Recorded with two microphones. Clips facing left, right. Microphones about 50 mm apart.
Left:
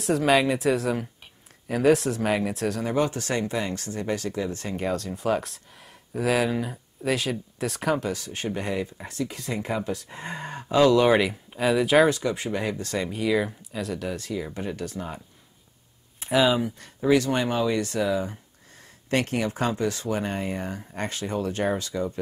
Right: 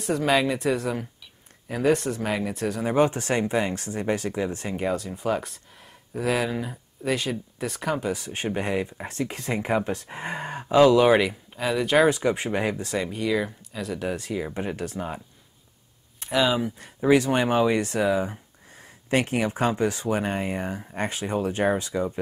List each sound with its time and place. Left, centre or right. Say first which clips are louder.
0.0 s speech: left 1 dB; centre
2.8 s speech: right 6 dB; right; by 8.1 s centre
8.1 s speech: right 2 dB; right
9.1 s speech: right 2 dB; right; by 12.1 s centre
12.1 s speech: right 2 dB; right; by 13.9 s centre
13.9 s speech: right 6 dB; centre
16.2 s speech: left 1 dB; centre
16.7 s speech: right 1 dB; centre